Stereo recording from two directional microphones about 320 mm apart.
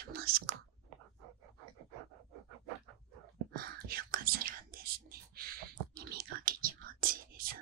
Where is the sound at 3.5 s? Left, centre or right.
Right.